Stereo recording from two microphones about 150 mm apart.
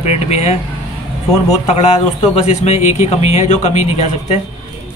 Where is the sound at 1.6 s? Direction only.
50° left (ahead or behind).